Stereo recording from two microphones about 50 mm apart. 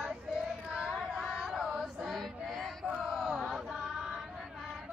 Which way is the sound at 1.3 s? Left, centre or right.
Centre.